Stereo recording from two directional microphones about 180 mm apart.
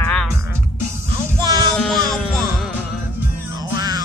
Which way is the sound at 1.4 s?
20° right (ahead or behind).